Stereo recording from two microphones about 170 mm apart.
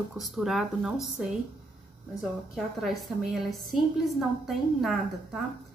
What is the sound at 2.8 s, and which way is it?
Speech, centre (ahead or behind).